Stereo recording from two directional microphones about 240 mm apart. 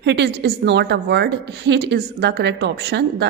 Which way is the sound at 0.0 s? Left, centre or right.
Right.